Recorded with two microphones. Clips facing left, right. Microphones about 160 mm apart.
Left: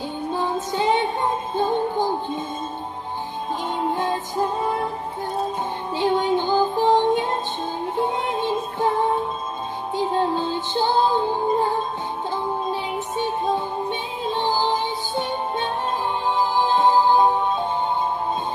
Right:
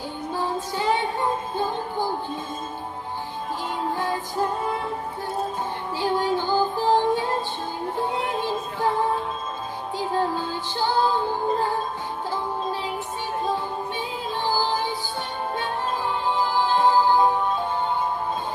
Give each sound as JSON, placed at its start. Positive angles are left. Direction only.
{"t": 0.3, "sound": "music", "side_deg": 20}
{"t": 3.8, "sound": "music", "side_deg": 20}
{"t": 5.9, "sound": "music", "side_deg": 20}
{"t": 13.8, "sound": "music", "side_deg": 20}